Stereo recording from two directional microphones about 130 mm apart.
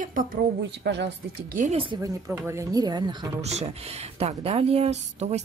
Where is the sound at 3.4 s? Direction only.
55° right (ahead or behind).